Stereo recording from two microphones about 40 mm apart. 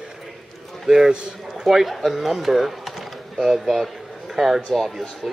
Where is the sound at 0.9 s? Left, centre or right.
Centre.